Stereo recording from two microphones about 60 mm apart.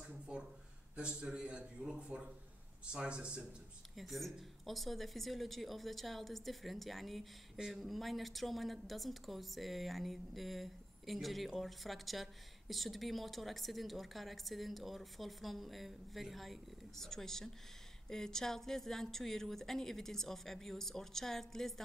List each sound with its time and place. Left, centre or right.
0.1 s a sound: centre
0.9 s a man's voice: centre
3.9 s speech: centre